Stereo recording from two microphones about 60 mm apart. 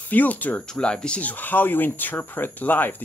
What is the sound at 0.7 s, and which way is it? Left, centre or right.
Speech, centre.